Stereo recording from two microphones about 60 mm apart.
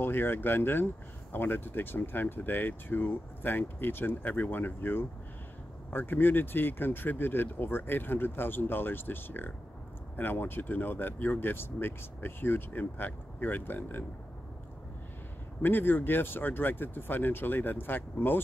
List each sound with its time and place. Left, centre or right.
0.0 s speech: left
15.6 s speech: left